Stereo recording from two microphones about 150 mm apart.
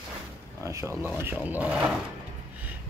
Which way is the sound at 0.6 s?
20° right (ahead or behind).